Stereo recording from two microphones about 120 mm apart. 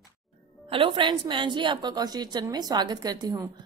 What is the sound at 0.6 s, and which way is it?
A woman's voice, 45° right (ahead or behind).